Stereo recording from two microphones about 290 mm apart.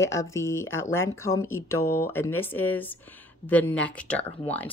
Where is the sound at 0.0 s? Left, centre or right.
Centre.